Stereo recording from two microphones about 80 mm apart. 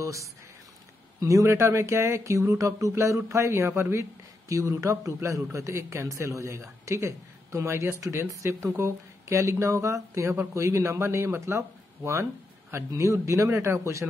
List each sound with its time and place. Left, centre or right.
0.0 s speech: right